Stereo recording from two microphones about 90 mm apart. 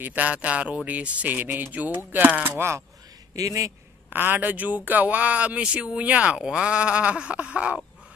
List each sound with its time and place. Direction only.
0.0 s speech: 15° right (ahead or behind)
3.3 s speech: 40° right (ahead or behind)
4.1 s speech: 20° right (ahead or behind)